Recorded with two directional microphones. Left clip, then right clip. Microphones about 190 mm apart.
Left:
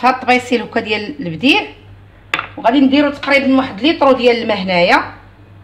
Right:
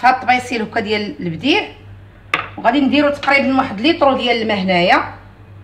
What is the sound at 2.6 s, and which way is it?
A woman's voice, 30° left (ahead or behind).